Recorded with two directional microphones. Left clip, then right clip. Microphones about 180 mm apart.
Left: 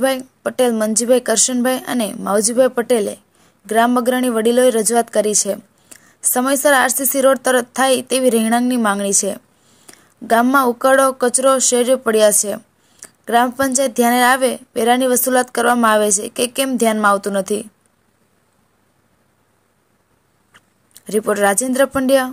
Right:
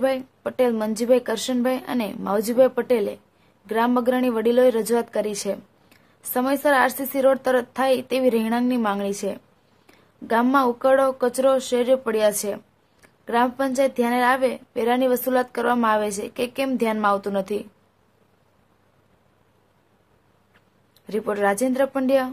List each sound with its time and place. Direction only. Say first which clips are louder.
0.0 s speech: left 5 dB; 25° left (ahead or behind)
20.5 s speech: left 12 dB; 25° left (ahead or behind)